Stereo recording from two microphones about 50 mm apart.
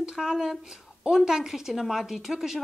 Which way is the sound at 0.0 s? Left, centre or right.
Centre.